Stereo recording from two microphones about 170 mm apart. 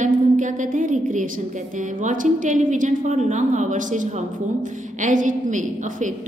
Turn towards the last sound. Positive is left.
turn(degrees=-50)  # may be behind; listen again after turning